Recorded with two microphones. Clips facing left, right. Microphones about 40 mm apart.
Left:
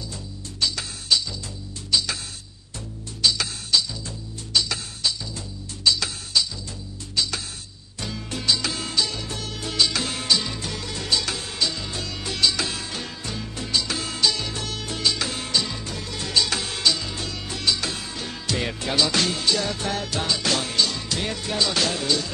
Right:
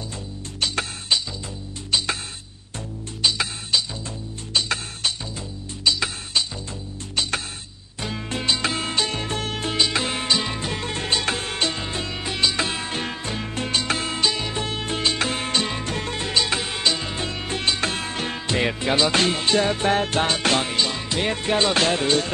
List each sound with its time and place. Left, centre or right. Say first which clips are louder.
0.6 s music: right 2 dB; right
3.2 s music: right 1 dB; right
4.6 s music: right 1 dB; right
5.9 s music: even; right
7.2 s music: right 2 dB; right
9.8 s music: even; right